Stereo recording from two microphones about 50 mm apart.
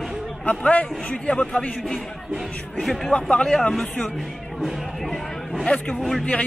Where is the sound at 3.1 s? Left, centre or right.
Centre.